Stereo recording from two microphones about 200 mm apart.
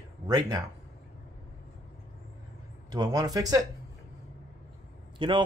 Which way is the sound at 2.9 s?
20° right (ahead or behind).